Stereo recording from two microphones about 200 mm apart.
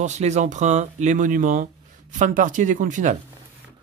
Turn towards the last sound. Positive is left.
turn(degrees=-40)  # may be behind; listen again after turning